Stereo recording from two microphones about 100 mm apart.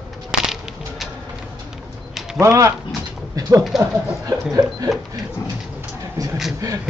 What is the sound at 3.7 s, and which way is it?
Speech, 5° right (ahead or behind).